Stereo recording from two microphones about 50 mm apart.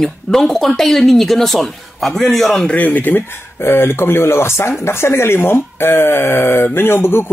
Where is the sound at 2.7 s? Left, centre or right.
Left.